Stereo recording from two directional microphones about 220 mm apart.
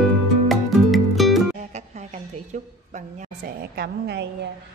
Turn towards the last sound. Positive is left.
turn(degrees=-50)  # may be behind; listen again after turning